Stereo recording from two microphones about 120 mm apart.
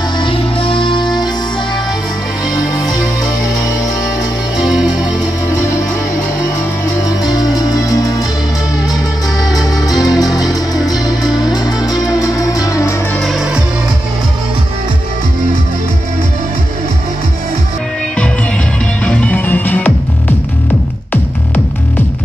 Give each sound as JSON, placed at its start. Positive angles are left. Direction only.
{"t": 0.2, "sound": "music", "side_deg": 50}
{"t": 4.6, "sound": "music", "side_deg": -5}
{"t": 7.3, "sound": "music", "side_deg": 35}
{"t": 9.8, "sound": "music", "side_deg": 30}
{"t": 13.2, "sound": "music", "side_deg": 0}
{"t": 19.0, "sound": "music", "side_deg": 10}